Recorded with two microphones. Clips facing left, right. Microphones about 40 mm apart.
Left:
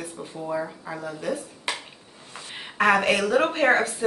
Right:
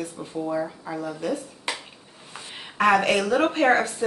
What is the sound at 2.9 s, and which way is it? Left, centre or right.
A woman's voice, centre.